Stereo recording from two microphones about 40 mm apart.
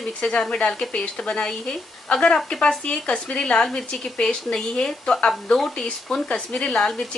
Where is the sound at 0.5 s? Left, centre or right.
Left.